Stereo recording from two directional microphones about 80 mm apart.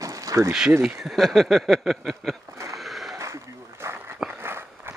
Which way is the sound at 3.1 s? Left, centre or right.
Right.